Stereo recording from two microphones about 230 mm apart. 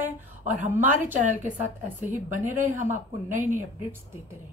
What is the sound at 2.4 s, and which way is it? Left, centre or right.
Speech, centre.